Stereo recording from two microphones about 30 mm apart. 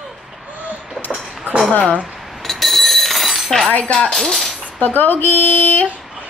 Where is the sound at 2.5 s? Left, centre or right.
Centre.